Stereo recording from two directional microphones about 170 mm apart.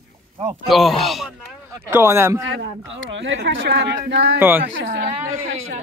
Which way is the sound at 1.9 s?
15° right (ahead or behind).